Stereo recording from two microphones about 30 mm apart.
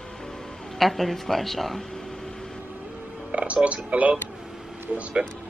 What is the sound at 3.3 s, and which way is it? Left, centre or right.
Music, right.